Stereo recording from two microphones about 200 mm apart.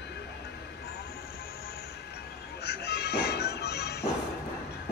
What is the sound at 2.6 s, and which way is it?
Music, 55° left (ahead or behind).